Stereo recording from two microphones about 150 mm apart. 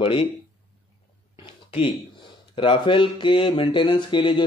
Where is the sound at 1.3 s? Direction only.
40° left (ahead or behind).